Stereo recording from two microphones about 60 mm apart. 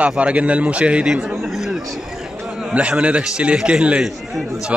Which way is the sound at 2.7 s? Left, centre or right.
Right.